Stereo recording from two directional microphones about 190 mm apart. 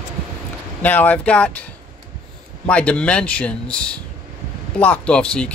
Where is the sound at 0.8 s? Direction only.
10° left (ahead or behind).